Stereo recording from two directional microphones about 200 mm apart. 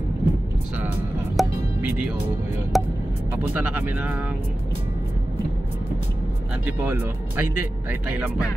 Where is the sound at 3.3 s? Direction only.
10° right (ahead or behind).